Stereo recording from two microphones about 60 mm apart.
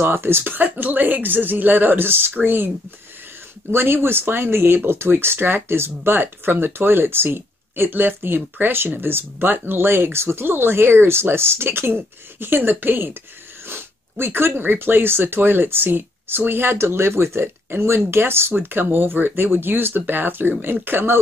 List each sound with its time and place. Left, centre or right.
0.0 s speech: right
3.7 s speech: right